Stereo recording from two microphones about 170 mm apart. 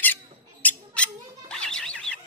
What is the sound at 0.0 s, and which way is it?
Squawk, 10° left (ahead or behind).